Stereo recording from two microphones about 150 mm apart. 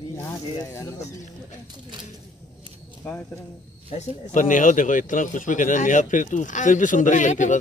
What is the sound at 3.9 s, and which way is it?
A man's voice, 55° left (ahead or behind).